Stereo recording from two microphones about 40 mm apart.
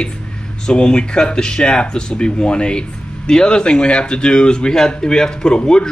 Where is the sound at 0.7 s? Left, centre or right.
Left.